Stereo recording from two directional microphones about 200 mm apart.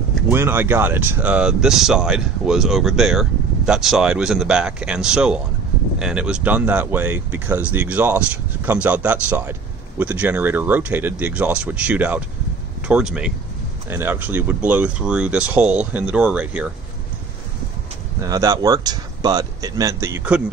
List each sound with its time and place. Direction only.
0.3 s speech: 10° right (ahead or behind)
18.2 s speech: 15° right (ahead or behind)